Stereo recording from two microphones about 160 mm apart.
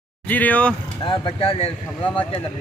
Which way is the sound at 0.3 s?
10° left (ahead or behind).